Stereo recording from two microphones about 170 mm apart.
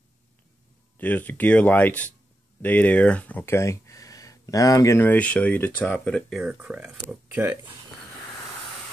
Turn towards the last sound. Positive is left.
turn(degrees=-10)  # may be behind; listen again after turning